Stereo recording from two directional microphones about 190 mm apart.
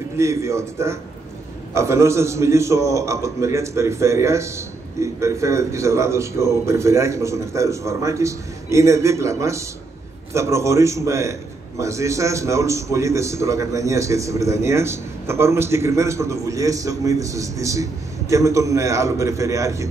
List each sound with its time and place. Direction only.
0.2 s a man's voice: 15° right (ahead or behind)